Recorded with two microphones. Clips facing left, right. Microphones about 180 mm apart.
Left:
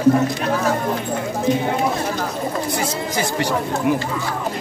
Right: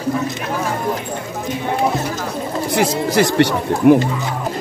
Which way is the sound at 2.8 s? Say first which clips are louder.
Right 7 dB; 75° right (ahead or behind).